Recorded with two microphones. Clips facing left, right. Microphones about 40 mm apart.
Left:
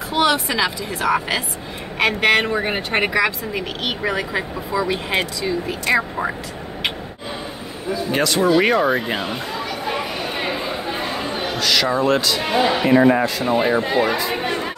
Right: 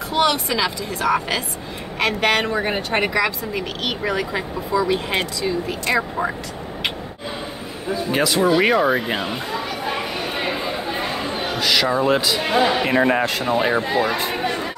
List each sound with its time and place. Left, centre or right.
0.1 s speech: centre
8.1 s a sound: centre
11.5 s speech: centre
12.4 s speech: centre
12.8 s speech: right
13.1 s speech: right
13.8 s speech: left
14.4 s music: centre